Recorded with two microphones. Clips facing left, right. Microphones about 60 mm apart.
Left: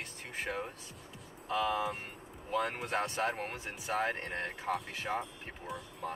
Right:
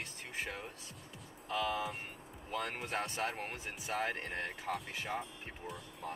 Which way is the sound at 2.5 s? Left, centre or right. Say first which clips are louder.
Left 5 dB; centre.